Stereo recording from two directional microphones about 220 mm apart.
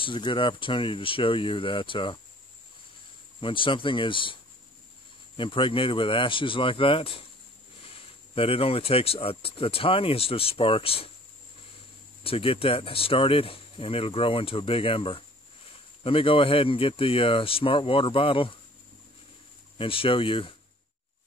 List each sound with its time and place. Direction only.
0.0 s speech: 20° left (ahead or behind)
3.3 s speech: 25° left (ahead or behind)
5.4 s speech: 25° left (ahead or behind)
12.2 s speech: 25° left (ahead or behind)
19.8 s speech: 25° left (ahead or behind)